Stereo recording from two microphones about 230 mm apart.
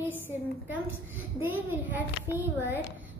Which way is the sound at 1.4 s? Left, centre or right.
Centre.